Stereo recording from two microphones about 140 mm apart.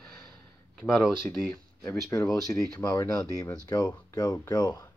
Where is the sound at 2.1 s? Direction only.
20° left (ahead or behind).